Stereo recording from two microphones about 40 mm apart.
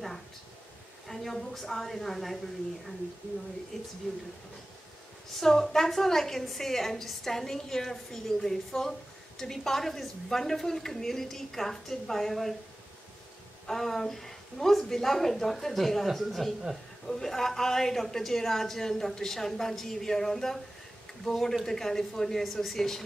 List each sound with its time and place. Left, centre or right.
1.0 s a woman's voice: centre
3.7 s a woman's voice: centre
5.4 s a woman's voice: centre
13.7 s a woman's voice: centre